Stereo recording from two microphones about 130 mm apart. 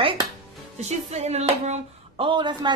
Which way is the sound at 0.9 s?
55° right (ahead or behind).